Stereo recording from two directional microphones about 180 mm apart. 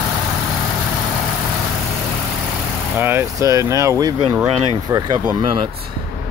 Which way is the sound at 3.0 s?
10° right (ahead or behind).